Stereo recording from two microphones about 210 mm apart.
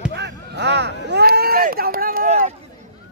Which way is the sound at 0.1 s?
55° right (ahead or behind).